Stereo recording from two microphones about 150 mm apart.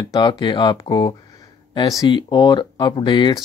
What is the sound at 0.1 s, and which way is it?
Speech, 30° left (ahead or behind).